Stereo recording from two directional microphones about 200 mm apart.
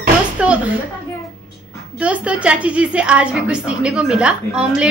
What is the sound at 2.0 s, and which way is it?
A woman's voice, 5° right (ahead or behind).